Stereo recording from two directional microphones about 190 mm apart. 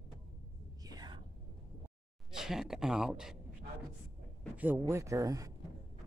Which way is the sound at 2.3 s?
Centre (ahead or behind).